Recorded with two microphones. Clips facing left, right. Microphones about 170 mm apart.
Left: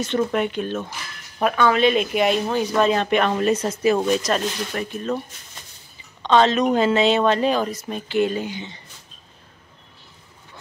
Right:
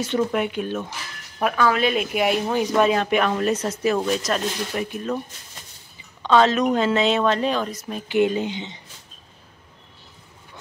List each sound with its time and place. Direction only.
0.0 s speech: 10° right (ahead or behind)
4.7 s speech: 10° right (ahead or behind)
6.2 s speech: 5° right (ahead or behind)
8.1 s speech: 15° right (ahead or behind)